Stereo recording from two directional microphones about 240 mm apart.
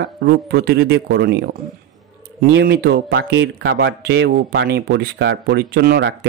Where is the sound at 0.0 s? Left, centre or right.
Right.